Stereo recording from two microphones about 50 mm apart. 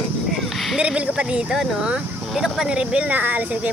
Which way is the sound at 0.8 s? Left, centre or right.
Right.